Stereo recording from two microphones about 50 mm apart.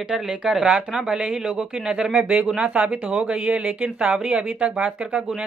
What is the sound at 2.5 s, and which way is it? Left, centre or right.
Speech, right.